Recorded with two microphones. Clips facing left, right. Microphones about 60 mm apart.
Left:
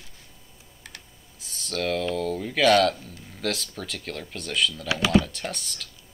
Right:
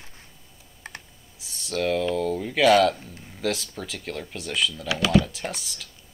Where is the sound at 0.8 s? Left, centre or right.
Right.